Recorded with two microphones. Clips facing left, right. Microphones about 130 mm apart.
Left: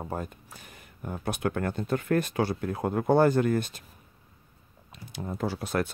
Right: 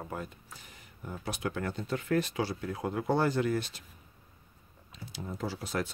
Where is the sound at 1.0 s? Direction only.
55° left (ahead or behind).